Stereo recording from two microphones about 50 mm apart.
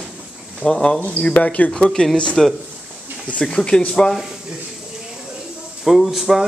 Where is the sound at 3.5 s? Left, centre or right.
Centre.